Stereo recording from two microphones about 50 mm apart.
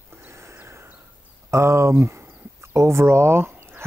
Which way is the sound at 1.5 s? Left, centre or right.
Right.